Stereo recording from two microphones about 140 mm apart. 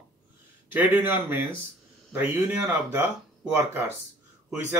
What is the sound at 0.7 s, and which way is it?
Speech, 15° right (ahead or behind).